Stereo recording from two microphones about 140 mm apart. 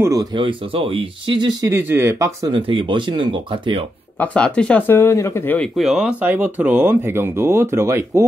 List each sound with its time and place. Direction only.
0.0 s speech: 25° right (ahead or behind)
1.7 s speech: 15° right (ahead or behind)
2.5 s speech: 35° right (ahead or behind)
4.2 s speech: 10° left (ahead or behind)
5.8 s speech: 5° right (ahead or behind); by 8.3 s 20° right (ahead or behind)